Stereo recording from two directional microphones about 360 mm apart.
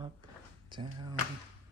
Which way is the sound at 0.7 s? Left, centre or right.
Centre.